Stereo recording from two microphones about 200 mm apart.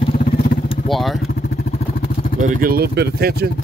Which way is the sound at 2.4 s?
45° right (ahead or behind).